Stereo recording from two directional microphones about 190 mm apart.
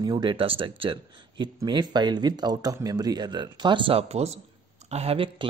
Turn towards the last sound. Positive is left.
turn(degrees=-30)  # may be behind; listen again after turning